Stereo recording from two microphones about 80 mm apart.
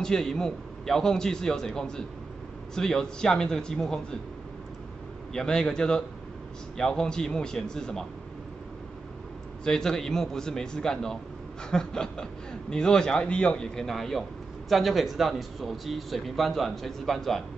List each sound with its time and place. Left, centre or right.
0.0 s speech: centre
5.3 s speech: centre
9.7 s speech: centre